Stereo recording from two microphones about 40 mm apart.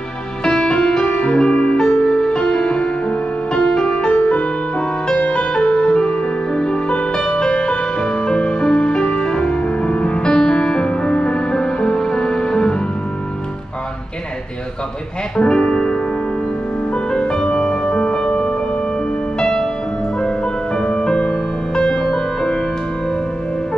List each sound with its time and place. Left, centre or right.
0.4 s music: left
15.4 s music: left
16.9 s music: left
19.4 s music: centre